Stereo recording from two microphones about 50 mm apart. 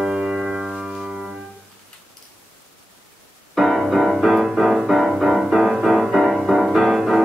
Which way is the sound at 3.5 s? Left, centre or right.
Centre.